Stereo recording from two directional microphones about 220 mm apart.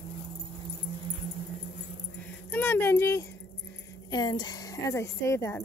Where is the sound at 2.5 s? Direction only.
10° left (ahead or behind).